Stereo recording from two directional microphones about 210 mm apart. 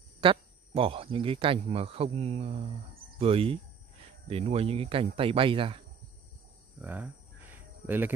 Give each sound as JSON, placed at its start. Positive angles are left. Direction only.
{"t": 0.2, "sound": "speech", "side_deg": -25}
{"t": 6.8, "sound": "cricket", "side_deg": -10}